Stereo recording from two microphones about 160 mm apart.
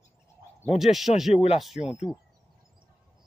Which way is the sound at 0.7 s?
Centre (ahead or behind).